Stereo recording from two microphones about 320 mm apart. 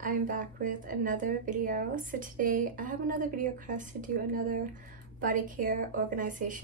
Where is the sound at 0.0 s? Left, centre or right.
Right.